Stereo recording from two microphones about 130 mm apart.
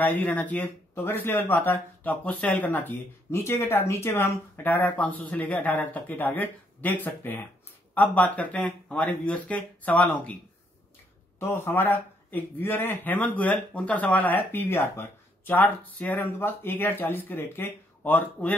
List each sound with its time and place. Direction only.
0.0 s speech: 15° left (ahead or behind)
11.3 s speech: 20° left (ahead or behind)